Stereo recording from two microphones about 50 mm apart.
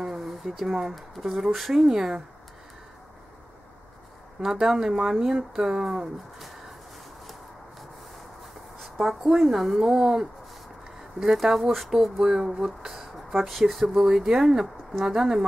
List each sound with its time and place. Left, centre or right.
0.0 s speech: centre
4.4 s speech: centre
8.8 s speech: centre